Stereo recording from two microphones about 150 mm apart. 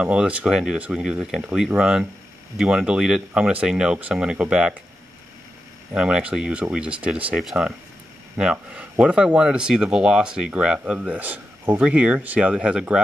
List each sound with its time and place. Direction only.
0.0 s speech: 10° right (ahead or behind)
5.9 s speech: 5° right (ahead or behind)